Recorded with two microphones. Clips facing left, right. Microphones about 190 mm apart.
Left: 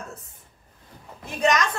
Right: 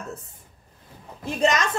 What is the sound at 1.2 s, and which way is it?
Speech, 25° right (ahead or behind).